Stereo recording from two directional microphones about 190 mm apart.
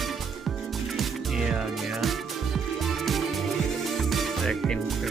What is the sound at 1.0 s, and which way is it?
Music, 5° right (ahead or behind).